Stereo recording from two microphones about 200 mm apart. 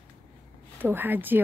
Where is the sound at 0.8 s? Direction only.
10° right (ahead or behind).